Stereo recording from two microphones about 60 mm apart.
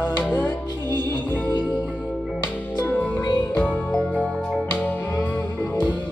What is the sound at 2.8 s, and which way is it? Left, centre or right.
Music, left.